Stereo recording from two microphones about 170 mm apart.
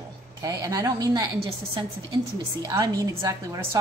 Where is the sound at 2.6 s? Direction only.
20° right (ahead or behind).